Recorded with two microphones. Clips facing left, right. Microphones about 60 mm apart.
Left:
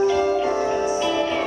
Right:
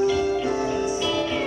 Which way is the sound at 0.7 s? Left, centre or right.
Left.